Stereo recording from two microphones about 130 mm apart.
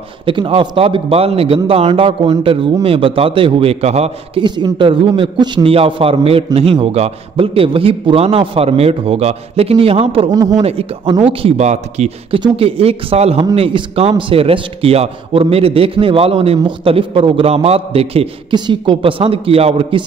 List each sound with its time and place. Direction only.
0.2 s a man's voice: 40° right (ahead or behind)
4.4 s a man's voice: 35° right (ahead or behind)
10.3 s speech: 30° right (ahead or behind)
10.6 s a man's voice: 50° right (ahead or behind)
11.1 s speech: 40° right (ahead or behind)
11.5 s speech: 60° right (ahead or behind)
12.4 s a man's voice: 45° right (ahead or behind)